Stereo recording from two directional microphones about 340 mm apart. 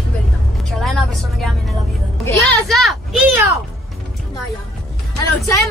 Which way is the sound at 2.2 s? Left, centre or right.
Centre.